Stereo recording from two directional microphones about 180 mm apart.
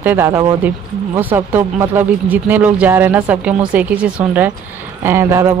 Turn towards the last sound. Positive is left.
turn(degrees=-15)  # may be behind; listen again after turning